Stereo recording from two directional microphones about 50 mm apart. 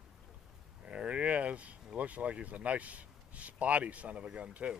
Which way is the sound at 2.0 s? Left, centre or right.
Right.